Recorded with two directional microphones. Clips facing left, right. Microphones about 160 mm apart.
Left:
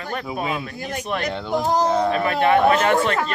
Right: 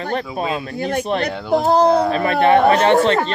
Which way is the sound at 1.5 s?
65° right (ahead or behind).